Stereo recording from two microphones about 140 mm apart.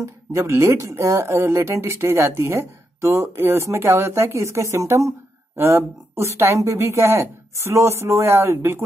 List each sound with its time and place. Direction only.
0.0 s speech: 20° right (ahead or behind)